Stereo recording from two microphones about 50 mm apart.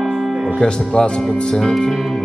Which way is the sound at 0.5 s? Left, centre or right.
Centre.